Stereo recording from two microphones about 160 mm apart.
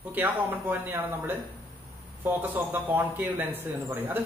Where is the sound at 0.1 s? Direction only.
10° right (ahead or behind).